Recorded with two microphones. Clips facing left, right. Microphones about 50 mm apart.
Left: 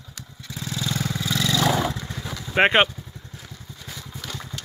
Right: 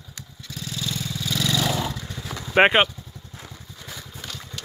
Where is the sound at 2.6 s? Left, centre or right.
Centre.